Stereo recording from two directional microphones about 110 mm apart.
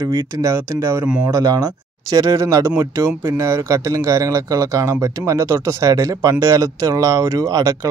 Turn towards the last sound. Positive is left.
turn(degrees=-30)  # may be behind; listen again after turning